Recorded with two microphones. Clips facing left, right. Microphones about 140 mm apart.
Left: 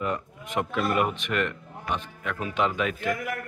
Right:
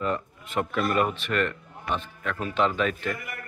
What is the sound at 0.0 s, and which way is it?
Speech, 15° left (ahead or behind).